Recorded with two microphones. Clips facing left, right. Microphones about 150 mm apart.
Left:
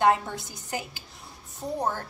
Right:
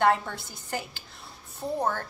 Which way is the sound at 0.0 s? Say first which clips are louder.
Left 1 dB; 15° left (ahead or behind).